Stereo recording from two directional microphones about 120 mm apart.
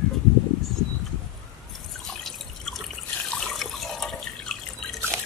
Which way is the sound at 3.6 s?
Centre (ahead or behind).